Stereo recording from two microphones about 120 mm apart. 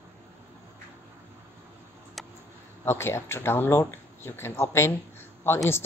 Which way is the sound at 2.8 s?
20° left (ahead or behind).